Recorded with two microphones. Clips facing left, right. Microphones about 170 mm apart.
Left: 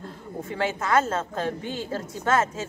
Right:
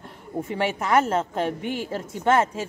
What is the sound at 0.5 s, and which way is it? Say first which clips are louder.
Speech: right 1 dB; 20° right (ahead or behind).